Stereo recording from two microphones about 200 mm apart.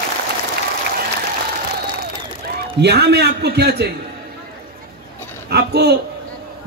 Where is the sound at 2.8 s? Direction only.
55° right (ahead or behind).